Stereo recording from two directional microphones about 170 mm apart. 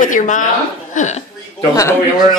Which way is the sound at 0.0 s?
50° left (ahead or behind).